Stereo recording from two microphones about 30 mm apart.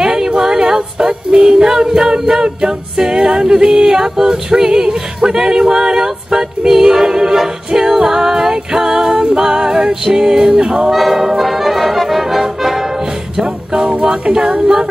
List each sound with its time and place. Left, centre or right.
0.0 s music: right
10.9 s brass instrument: centre
13.8 s music: right